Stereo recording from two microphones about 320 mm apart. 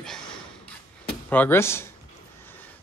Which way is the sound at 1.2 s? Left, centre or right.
Centre.